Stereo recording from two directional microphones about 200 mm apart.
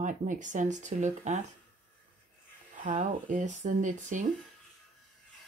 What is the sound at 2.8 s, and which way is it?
Speech, 40° right (ahead or behind).